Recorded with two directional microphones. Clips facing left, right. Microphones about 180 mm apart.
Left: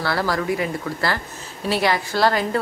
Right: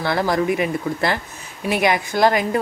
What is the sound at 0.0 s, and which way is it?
A woman's voice, 20° right (ahead or behind).